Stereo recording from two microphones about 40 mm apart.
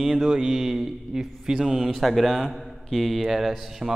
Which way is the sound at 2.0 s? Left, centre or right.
Centre.